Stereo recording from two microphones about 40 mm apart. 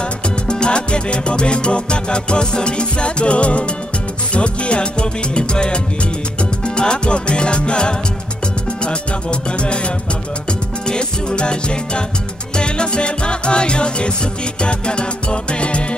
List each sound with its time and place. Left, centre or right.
0.5 s music: left
6.8 s music: left
10.9 s music: left